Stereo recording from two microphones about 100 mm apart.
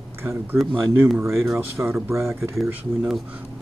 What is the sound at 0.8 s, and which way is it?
Speech, 25° right (ahead or behind).